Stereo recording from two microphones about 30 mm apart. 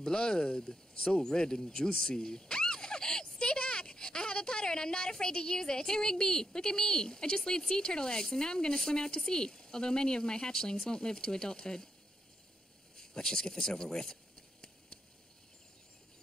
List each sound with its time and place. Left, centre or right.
0.0 s speech: left
12.9 s speech: left